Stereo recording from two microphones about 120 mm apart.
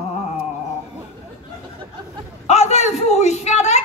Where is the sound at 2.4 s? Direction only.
70° left (ahead or behind).